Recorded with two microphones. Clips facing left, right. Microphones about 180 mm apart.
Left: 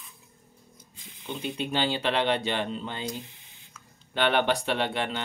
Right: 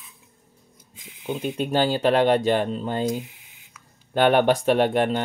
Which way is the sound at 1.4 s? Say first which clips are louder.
Right 6 dB; 45° right (ahead or behind).